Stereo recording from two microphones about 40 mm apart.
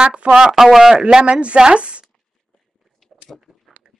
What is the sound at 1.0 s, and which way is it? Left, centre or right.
Speech, right.